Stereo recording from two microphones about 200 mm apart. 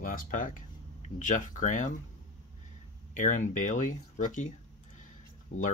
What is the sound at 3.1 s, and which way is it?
Speech, 40° left (ahead or behind).